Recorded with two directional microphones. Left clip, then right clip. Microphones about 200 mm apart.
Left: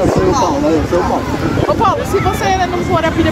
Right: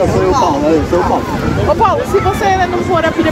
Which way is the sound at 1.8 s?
55° left (ahead or behind).